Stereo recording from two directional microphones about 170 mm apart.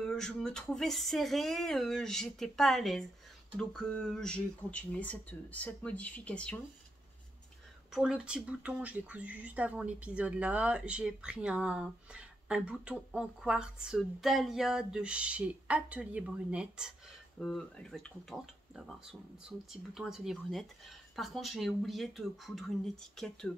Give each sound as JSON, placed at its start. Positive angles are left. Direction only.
{"t": 0.0, "sound": "speech", "side_deg": 5}
{"t": 7.9, "sound": "speech", "side_deg": -5}
{"t": 17.4, "sound": "speech", "side_deg": 5}